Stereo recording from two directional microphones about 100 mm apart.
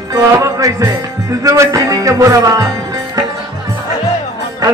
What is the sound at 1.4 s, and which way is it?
A man's voice, 30° right (ahead or behind).